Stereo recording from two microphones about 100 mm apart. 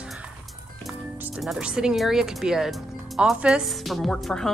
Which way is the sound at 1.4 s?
5° right (ahead or behind).